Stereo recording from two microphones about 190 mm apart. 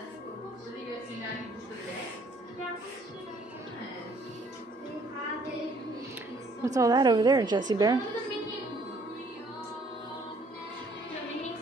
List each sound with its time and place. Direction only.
6.6 s a woman's voice: 15° right (ahead or behind)